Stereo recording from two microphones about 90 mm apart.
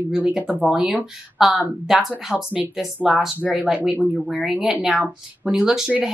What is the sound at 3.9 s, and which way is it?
Speech, 15° right (ahead or behind).